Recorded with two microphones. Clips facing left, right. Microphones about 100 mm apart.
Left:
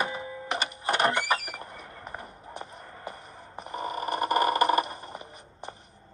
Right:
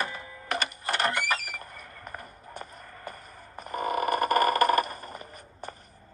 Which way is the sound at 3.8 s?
55° right (ahead or behind).